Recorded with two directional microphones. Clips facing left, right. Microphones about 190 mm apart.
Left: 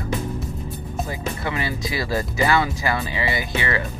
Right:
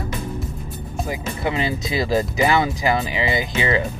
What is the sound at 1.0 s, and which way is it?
Speech, 20° right (ahead or behind).